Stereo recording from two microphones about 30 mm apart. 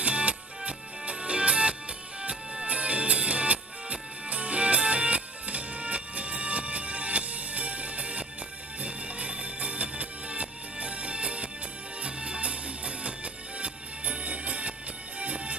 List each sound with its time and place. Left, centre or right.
0.0 s music: right